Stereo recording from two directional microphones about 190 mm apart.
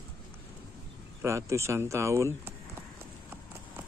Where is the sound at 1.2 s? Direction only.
15° right (ahead or behind).